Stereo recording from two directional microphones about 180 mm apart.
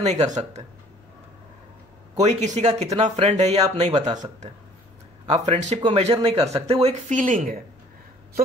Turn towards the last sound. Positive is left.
turn(degrees=-50)  # may be behind; listen again after turning